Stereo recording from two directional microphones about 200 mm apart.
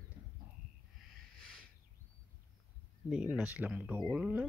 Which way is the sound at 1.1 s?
Centre (ahead or behind).